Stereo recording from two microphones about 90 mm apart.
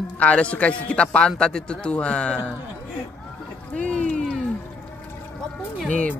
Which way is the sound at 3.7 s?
15° left (ahead or behind).